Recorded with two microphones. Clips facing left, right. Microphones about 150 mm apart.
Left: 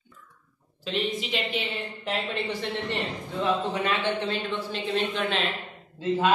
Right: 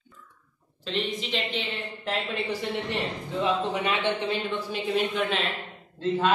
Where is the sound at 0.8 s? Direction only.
5° left (ahead or behind).